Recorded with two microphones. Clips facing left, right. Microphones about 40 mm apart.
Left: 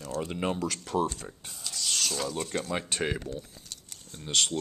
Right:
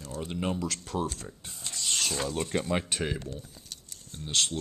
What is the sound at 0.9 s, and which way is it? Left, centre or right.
Speech, left.